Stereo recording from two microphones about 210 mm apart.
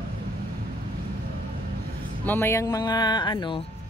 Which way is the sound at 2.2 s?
10° left (ahead or behind).